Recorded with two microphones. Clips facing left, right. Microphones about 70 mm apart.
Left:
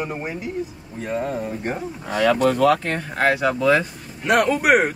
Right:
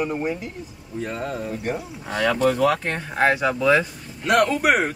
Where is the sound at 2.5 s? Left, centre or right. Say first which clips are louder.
Left 3 dB; centre.